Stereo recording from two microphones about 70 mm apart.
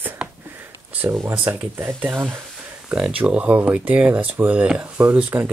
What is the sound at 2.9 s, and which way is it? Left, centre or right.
Speech, centre.